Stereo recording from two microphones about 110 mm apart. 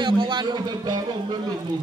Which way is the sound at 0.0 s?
45° right (ahead or behind).